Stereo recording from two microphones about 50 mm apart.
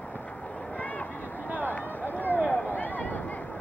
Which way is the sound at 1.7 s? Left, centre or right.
Left.